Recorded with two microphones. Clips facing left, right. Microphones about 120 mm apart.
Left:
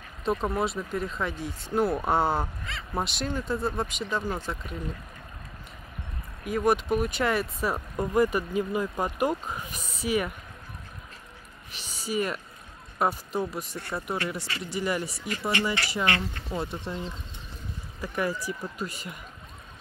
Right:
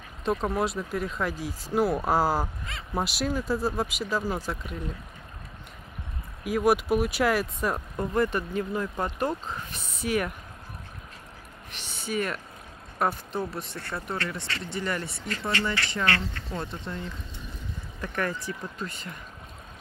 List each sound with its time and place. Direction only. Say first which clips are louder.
0.2 s speech: even; centre (ahead or behind)
6.4 s speech: right 1 dB; 5° right (ahead or behind)
11.7 s speech: left 1 dB; centre (ahead or behind)
13.7 s speech: left 2 dB; 15° left (ahead or behind)